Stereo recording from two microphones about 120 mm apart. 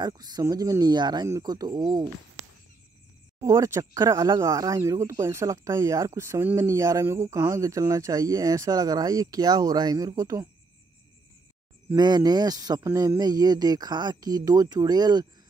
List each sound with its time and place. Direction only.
0.0 s speech: 35° right (ahead or behind)
3.3 s speech: 25° right (ahead or behind)
11.9 s speech: 35° right (ahead or behind)